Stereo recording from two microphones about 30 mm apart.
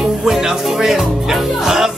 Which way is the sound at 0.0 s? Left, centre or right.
Centre.